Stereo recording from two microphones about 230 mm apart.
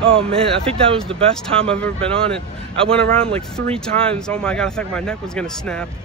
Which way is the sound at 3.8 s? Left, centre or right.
Centre.